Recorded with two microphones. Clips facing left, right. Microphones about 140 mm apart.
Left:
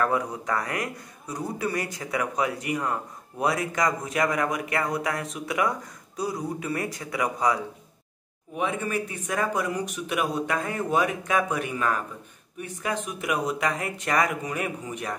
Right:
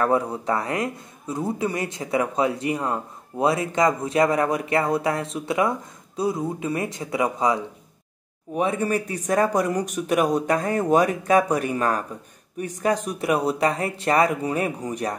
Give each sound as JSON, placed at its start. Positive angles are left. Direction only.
{"t": 0.0, "sound": "a man's voice", "side_deg": -30}
{"t": 8.5, "sound": "speech", "side_deg": -40}